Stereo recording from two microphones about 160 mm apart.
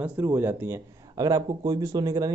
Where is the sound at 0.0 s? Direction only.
15° right (ahead or behind).